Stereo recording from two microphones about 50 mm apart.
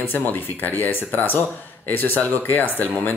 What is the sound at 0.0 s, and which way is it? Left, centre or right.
Speech, left.